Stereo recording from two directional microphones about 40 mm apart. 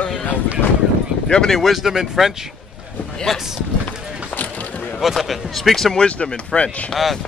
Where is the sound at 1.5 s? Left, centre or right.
Centre.